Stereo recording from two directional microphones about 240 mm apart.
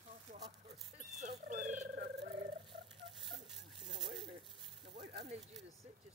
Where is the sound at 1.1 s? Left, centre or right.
Right.